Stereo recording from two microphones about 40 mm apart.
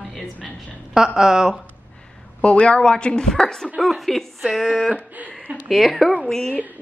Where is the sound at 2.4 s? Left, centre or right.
Left; by 3.7 s centre.